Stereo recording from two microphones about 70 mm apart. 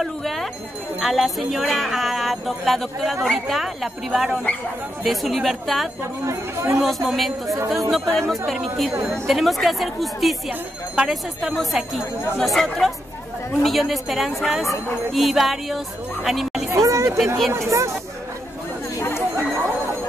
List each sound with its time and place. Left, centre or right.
0.0 s speech: centre
6.2 s speech: right
7.1 s speech: centre
7.4 s speech: right
7.9 s speech: centre
16.7 s speech: right
18.9 s chatter: left